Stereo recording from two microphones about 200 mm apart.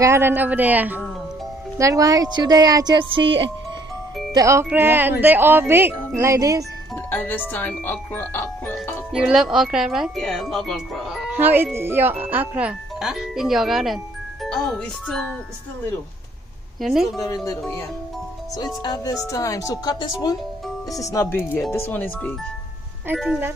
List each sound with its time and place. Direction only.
0.0 s a woman's voice: 10° right (ahead or behind)
4.3 s speech: 15° right (ahead or behind)
7.1 s speech: 10° left (ahead or behind)
9.1 s speech: 5° right (ahead or behind)
11.3 s speech: 10° right (ahead or behind)
16.8 s speech: centre (ahead or behind)
18.8 s speech: 20° left (ahead or behind)
23.0 s speech: 5° right (ahead or behind)